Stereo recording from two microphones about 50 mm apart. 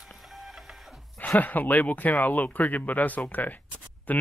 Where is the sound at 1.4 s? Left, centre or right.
Left.